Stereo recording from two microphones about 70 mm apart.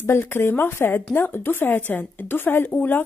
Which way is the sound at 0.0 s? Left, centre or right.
Left.